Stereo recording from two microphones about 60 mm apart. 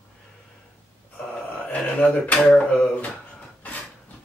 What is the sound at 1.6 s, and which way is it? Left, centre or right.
Speech, left.